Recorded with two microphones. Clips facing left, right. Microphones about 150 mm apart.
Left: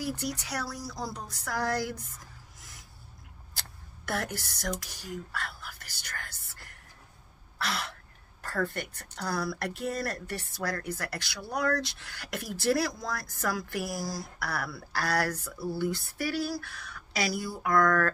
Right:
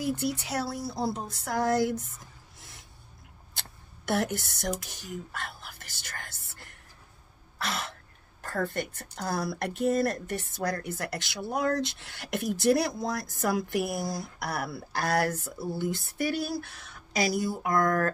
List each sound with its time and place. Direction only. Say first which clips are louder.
0.0 s speech: right 4 dB; 20° right (ahead or behind)
4.1 s speech: right 5 dB; 20° right (ahead or behind)
7.6 s a woman's voice: even; 20° right (ahead or behind)